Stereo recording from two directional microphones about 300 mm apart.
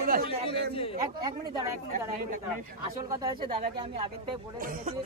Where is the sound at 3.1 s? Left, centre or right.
Centre.